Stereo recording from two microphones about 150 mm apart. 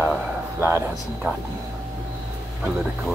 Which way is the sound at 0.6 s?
15° right (ahead or behind).